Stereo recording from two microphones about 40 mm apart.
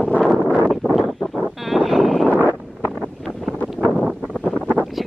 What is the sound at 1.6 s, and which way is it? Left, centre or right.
Vehicle, centre.